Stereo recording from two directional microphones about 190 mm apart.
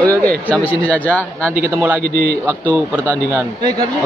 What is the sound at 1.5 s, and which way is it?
Speech, 10° right (ahead or behind).